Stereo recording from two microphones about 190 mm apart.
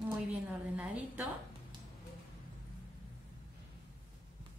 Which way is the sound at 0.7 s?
5° right (ahead or behind).